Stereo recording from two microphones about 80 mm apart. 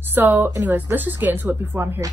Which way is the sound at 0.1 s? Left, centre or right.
Right.